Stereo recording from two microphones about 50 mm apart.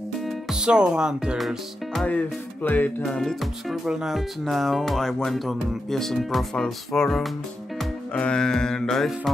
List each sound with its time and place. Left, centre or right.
0.3 s speech: centre
2.0 s music: left
3.1 s music: centre
3.3 s speech: centre
4.5 s speech: centre
6.5 s music: centre
8.1 s music: centre